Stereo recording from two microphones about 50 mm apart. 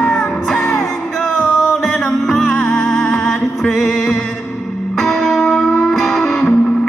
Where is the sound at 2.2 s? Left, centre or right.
Centre.